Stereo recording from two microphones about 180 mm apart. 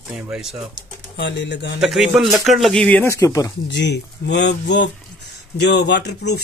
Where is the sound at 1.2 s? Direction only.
75° left (ahead or behind).